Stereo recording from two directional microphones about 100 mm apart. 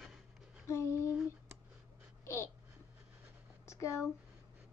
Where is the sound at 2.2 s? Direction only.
25° left (ahead or behind).